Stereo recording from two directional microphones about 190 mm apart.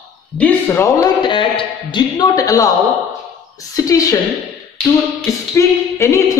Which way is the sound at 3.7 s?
20° left (ahead or behind).